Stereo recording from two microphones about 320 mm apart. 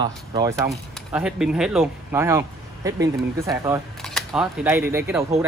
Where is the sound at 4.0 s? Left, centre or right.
Centre.